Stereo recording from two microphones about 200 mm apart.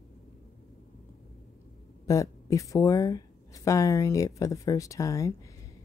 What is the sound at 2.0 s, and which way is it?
Speech, 15° left (ahead or behind).